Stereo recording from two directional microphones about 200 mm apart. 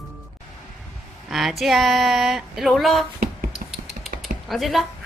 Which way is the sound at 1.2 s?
Centre (ahead or behind).